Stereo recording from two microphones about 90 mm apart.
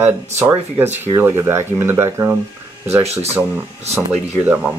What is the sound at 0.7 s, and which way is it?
Speech, 25° right (ahead or behind).